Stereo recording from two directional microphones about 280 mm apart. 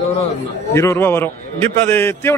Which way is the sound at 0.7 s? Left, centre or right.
Centre.